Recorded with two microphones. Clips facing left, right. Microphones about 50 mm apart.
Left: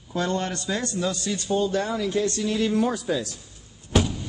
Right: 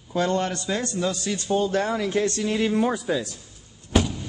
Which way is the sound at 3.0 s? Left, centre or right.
Centre.